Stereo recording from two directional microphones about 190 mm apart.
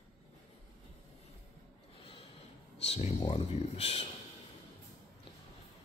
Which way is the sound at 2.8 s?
35° left (ahead or behind).